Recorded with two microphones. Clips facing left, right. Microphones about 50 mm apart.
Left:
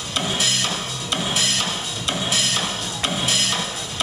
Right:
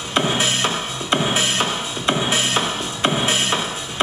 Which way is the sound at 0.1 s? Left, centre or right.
Right.